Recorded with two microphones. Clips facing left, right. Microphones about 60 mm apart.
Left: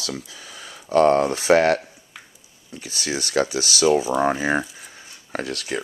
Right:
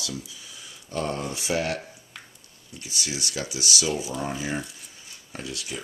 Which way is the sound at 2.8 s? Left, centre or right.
Left.